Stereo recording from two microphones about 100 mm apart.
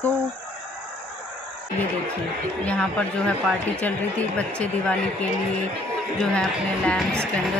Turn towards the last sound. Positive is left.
turn(degrees=5)  # may be behind; listen again after turning